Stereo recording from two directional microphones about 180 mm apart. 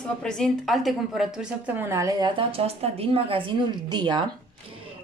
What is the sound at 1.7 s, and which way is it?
Speech, 15° right (ahead or behind).